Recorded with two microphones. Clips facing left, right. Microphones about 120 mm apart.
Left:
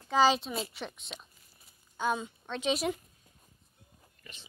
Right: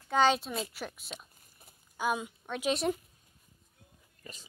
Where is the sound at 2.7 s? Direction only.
Centre (ahead or behind).